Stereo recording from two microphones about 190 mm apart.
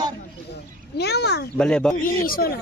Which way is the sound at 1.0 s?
60° left (ahead or behind).